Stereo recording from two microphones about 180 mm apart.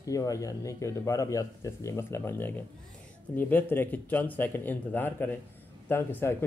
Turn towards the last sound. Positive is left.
turn(degrees=10)  # may be behind; listen again after turning